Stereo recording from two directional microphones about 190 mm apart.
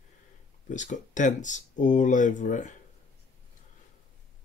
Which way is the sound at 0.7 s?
40° left (ahead or behind).